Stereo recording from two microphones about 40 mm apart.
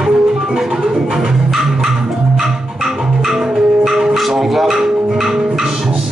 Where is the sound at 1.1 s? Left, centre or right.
Centre.